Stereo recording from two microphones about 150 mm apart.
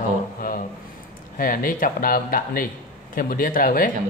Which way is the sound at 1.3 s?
70° left (ahead or behind).